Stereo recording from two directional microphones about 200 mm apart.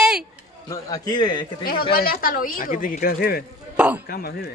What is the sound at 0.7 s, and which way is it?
Speech, 20° left (ahead or behind).